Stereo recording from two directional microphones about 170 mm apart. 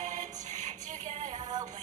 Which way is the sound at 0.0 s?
45° right (ahead or behind).